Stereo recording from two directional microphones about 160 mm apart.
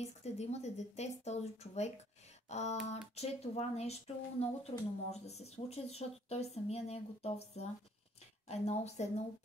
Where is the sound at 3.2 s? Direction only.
40° left (ahead or behind).